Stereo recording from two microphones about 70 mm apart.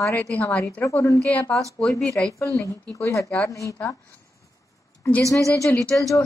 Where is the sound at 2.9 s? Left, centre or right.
Left.